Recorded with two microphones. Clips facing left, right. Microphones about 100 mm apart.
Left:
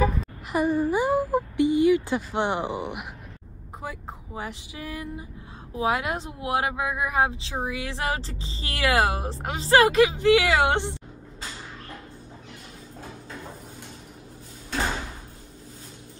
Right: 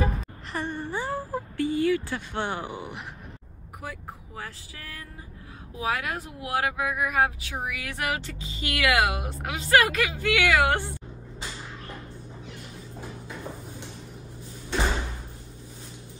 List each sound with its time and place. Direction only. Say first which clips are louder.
0.5 s speech: left 9 dB; 10° left (ahead or behind)
1.0 s speech: left 8 dB; 15° left (ahead or behind)